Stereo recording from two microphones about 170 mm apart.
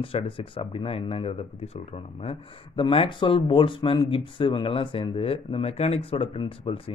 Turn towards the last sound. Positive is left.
turn(degrees=30)  # may be behind; listen again after turning